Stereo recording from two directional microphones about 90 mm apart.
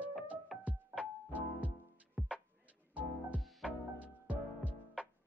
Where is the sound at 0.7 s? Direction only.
15° right (ahead or behind).